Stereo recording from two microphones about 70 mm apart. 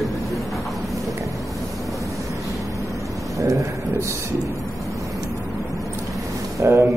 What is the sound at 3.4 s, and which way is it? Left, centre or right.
Speech, right.